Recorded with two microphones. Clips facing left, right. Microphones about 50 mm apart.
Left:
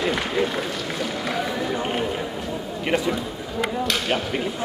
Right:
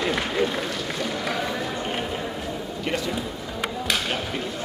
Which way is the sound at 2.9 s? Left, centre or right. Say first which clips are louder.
Left 5 dB; centre.